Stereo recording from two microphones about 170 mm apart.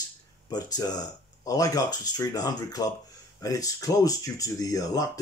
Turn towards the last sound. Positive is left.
turn(degrees=20)  # may be behind; listen again after turning